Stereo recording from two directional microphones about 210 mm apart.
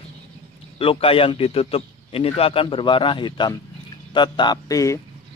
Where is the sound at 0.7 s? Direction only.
25° left (ahead or behind).